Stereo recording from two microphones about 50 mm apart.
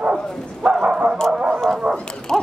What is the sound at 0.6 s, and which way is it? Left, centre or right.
Bow-wow, centre.